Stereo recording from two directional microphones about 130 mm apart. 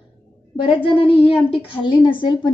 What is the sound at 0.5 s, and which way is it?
A woman's voice, 40° left (ahead or behind).